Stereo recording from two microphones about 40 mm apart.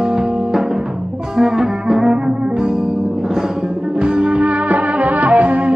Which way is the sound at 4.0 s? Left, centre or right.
Right.